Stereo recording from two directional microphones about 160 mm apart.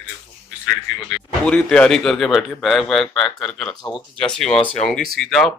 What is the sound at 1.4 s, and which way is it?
A man's voice, 5° left (ahead or behind).